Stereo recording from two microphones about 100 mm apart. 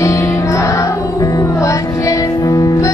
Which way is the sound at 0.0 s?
30° left (ahead or behind).